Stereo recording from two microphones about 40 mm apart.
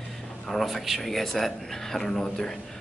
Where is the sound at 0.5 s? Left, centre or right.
Centre.